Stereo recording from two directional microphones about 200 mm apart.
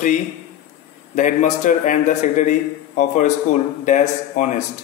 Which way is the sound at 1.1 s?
40° left (ahead or behind).